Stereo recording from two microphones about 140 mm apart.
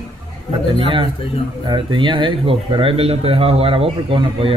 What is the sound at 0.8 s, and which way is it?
Speech, 40° right (ahead or behind).